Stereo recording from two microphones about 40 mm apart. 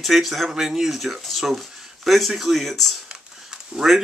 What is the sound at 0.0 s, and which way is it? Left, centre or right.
Speech, centre.